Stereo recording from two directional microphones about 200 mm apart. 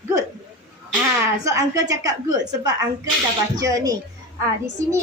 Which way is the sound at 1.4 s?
15° right (ahead or behind).